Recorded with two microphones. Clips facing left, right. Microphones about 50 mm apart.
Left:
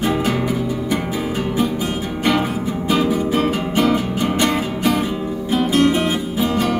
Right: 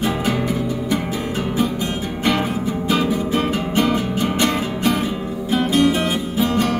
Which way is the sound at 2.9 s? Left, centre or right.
Centre.